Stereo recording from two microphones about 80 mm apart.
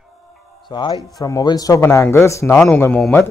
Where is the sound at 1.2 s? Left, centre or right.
Left.